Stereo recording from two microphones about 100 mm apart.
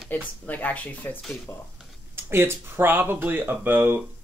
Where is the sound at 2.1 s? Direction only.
25° right (ahead or behind).